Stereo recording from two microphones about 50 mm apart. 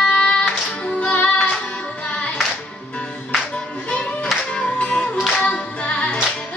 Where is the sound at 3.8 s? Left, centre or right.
Left.